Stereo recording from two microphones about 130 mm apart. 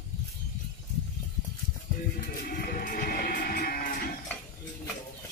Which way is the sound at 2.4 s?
90° left.